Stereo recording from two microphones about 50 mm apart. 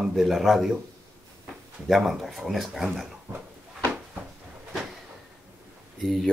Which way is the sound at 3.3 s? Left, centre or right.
Right.